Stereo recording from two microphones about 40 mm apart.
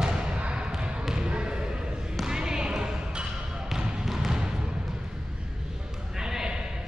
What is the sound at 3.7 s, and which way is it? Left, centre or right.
Trickle, centre.